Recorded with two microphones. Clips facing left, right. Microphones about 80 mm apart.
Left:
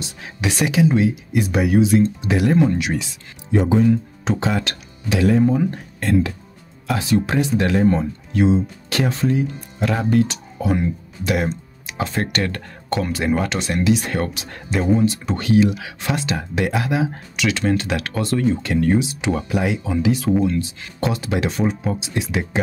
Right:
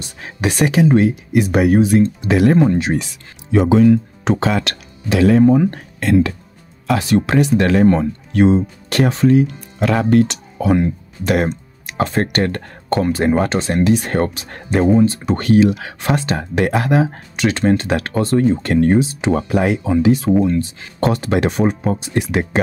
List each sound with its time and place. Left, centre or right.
0.0 s speech: right
3.5 s speech: right
5.5 s speech: right
5.9 s speech: right
6.9 s speech: right
17.4 s speech: right